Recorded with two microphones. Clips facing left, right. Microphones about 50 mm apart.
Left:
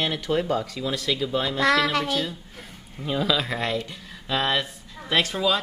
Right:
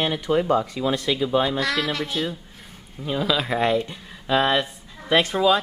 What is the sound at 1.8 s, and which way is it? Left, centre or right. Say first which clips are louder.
Speech: left 2 dB; centre.